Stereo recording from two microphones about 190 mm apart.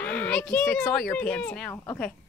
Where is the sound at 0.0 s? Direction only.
5° left (ahead or behind).